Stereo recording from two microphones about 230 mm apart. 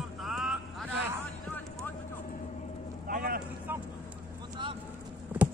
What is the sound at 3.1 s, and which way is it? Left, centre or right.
Vehicle, right.